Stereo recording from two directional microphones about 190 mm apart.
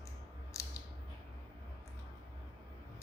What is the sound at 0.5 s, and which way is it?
Scissors, 15° left (ahead or behind).